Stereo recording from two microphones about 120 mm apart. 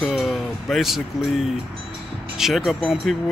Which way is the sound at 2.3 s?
Centre (ahead or behind).